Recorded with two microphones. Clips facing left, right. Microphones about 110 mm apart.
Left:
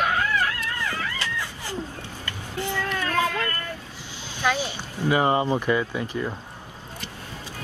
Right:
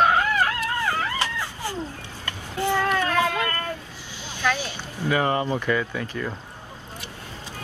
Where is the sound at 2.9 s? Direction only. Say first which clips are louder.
Right 5 dB; 45° right (ahead or behind).